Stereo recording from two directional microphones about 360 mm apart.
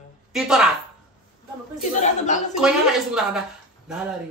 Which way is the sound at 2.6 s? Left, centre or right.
Centre.